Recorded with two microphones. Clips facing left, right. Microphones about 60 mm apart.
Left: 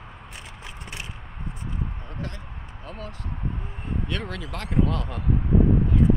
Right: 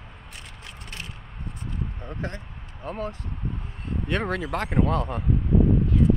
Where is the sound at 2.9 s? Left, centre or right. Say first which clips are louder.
Right 7 dB; right.